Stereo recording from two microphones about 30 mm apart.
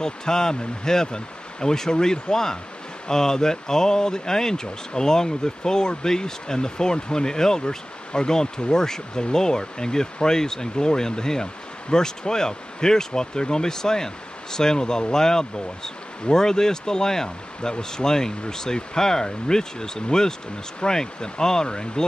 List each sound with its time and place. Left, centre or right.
0.0 s speech: left